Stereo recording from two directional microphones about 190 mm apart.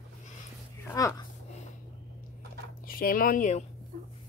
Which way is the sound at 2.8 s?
50° left (ahead or behind).